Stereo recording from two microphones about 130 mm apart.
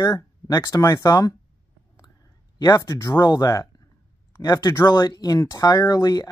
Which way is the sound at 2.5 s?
30° left (ahead or behind).